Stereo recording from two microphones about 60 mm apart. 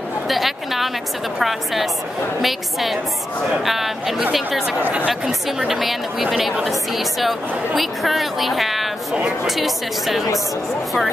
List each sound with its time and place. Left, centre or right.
0.3 s a woman's voice: centre
4.8 s speech: right
5.2 s a woman's voice: centre
9.1 s speech: centre
9.6 s a woman's voice: centre